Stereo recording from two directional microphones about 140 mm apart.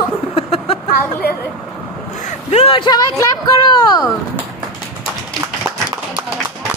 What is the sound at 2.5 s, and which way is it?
Speech, 45° left (ahead or behind).